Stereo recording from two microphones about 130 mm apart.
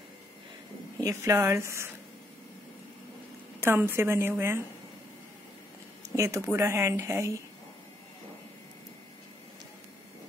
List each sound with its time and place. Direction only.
1.0 s speech: 20° right (ahead or behind)
3.6 s speech: 20° right (ahead or behind)
6.1 s speech: 25° right (ahead or behind)